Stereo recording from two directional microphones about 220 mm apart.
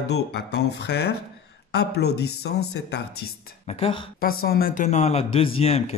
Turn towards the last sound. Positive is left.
turn(degrees=25)  # may be behind; listen again after turning